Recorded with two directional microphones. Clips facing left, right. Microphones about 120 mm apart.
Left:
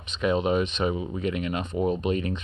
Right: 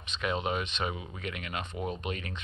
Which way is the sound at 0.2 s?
30° left (ahead or behind).